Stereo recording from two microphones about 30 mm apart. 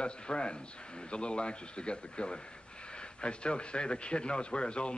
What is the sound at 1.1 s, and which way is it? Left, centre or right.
Speech, left.